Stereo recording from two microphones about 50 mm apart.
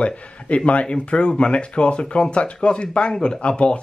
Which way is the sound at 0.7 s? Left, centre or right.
Left.